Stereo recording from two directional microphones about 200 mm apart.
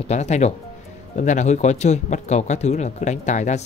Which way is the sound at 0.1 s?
35° left (ahead or behind).